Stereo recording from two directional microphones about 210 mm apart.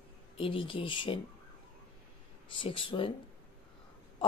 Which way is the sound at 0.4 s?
25° left (ahead or behind).